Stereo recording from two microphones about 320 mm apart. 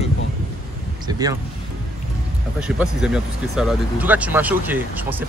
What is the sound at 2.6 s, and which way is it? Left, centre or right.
Speech, centre.